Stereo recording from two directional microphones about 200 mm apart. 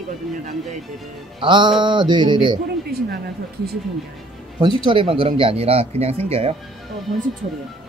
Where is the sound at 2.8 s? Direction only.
50° right (ahead or behind).